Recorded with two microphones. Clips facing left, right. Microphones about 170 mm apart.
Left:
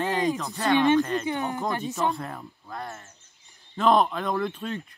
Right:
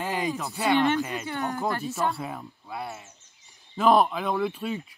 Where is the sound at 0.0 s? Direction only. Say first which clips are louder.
Left 3 dB; 10° right (ahead or behind).